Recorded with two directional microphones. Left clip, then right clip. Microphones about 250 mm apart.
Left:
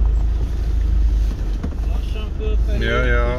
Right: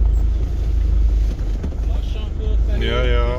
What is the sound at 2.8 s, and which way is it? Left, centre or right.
Vehicle, centre.